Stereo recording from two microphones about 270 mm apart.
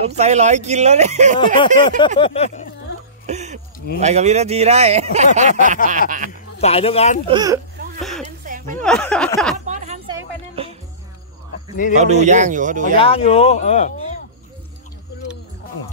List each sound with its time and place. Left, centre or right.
0.0 s speech: right
1.9 s speech: centre
3.3 s a sound: right
4.0 s speech: right
6.6 s speech: left
7.2 s speech: centre
8.0 s a sound: centre
8.5 s a sound: right
8.8 s speech: centre
9.7 s a sound: right
10.0 s music: centre
11.9 s speech: right
12.9 s speech: left